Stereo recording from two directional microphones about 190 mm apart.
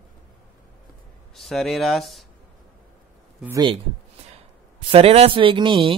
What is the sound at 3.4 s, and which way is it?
Speech, 20° right (ahead or behind).